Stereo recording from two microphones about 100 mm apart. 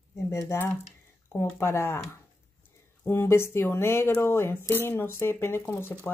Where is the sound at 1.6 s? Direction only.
25° left (ahead or behind).